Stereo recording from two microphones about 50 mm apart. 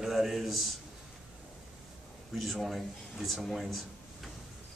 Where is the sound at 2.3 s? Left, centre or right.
Centre.